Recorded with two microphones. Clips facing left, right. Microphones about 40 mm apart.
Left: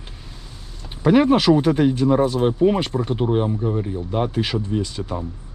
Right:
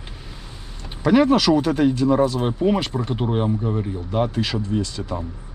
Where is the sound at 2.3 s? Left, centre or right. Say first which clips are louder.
Left 3 dB; centre.